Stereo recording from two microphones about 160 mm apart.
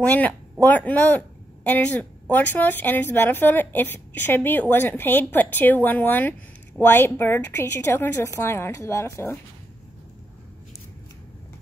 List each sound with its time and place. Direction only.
0.0 s speech: 10° left (ahead or behind)